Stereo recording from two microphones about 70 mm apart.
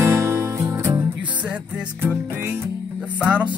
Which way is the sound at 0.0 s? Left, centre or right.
Right.